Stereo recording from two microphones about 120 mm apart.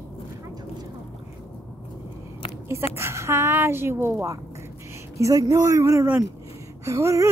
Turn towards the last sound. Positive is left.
turn(degrees=-25)  # may be behind; listen again after turning